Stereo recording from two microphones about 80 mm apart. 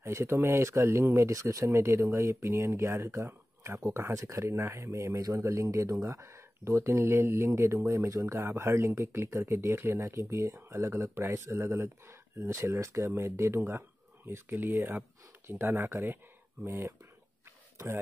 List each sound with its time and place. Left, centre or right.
0.0 s speech: right